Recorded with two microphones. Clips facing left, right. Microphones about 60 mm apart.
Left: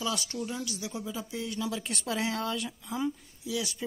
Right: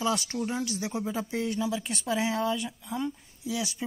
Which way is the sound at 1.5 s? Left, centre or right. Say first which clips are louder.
Right 3 dB; centre.